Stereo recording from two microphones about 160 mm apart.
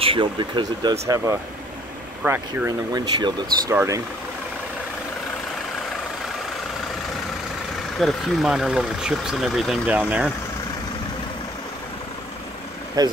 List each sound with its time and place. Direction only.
0.0 s speech: 35° right (ahead or behind)
1.0 s speech: 20° right (ahead or behind)
3.2 s speech: 25° right (ahead or behind)
8.0 s speech: centre (ahead or behind)
13.0 s speech: 25° right (ahead or behind)